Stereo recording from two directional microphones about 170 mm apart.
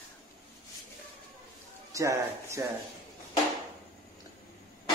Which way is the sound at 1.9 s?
20° right (ahead or behind).